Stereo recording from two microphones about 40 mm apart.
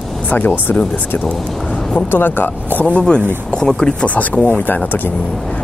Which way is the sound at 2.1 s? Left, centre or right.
Left.